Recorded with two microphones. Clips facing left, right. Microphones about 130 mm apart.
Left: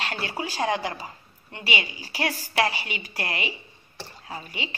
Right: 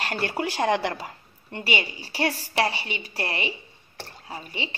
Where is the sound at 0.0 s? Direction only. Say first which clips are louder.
Right 3 dB; 50° right (ahead or behind); by 1.1 s 70° right (ahead or behind).